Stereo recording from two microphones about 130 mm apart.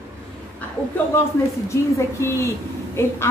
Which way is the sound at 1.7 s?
20° left (ahead or behind).